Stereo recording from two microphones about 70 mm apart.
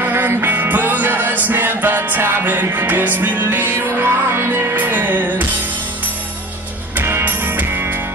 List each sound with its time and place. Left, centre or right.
0.0 s music: right
3.7 s music: right
7.0 s music: right